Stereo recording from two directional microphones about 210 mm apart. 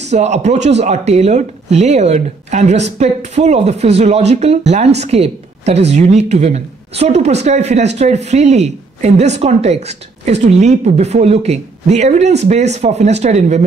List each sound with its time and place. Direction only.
0.1 s speech: 35° right (ahead or behind)